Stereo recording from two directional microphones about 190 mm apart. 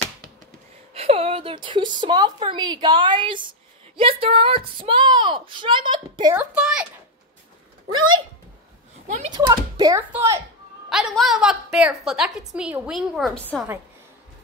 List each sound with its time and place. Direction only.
0.9 s a woman's voice: 30° right (ahead or behind)
6.3 s a woman's voice: 5° right (ahead or behind)
7.9 s speech: 90° right
9.0 s speech: 40° right (ahead or behind)
9.3 s a child's voice: 20° right (ahead or behind)
10.9 s a woman's voice: centre (ahead or behind)